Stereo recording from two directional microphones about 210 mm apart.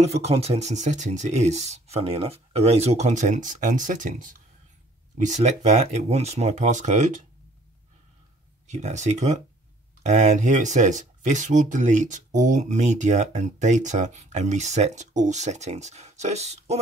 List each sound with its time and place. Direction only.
0.0 s speech: 30° right (ahead or behind)
8.6 s speech: 35° right (ahead or behind)